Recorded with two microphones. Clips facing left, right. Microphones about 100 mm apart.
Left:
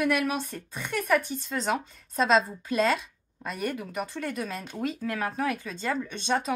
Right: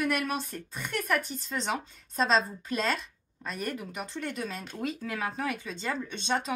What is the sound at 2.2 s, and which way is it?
Speech, 5° left (ahead or behind).